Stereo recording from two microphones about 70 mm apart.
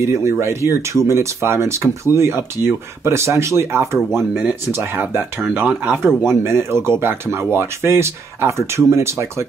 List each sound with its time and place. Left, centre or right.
0.0 s speech: right